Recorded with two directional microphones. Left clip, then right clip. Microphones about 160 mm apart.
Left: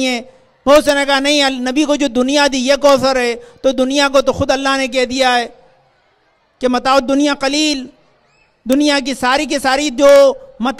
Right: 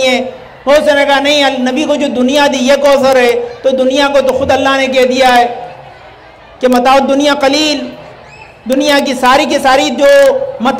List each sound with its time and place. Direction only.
0.7 s a man's voice: 50° left (ahead or behind)
6.6 s a man's voice: 40° left (ahead or behind)